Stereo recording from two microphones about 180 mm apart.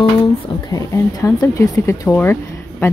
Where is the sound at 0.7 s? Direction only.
20° left (ahead or behind).